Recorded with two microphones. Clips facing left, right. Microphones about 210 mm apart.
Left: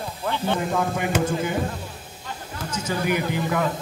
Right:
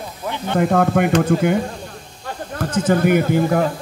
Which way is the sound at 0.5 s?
60° right (ahead or behind).